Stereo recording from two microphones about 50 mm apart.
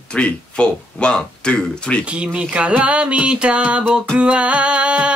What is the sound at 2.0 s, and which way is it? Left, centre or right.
Music, right.